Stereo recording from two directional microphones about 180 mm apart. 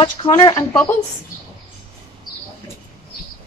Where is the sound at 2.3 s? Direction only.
25° left (ahead or behind).